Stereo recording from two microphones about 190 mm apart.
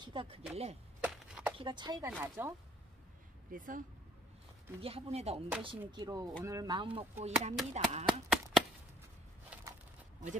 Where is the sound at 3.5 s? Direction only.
45° right (ahead or behind).